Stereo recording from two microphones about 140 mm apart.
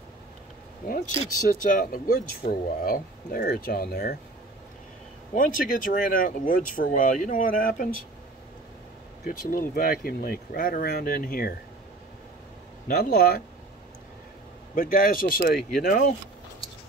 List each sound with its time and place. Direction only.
0.8 s speech: 90° left
5.3 s speech: 75° left (ahead or behind)
9.2 s speech: 90° left
12.8 s speech: 85° left
14.8 s speech: 90° left